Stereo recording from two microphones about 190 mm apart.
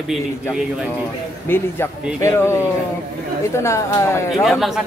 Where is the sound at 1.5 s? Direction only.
10° left (ahead or behind).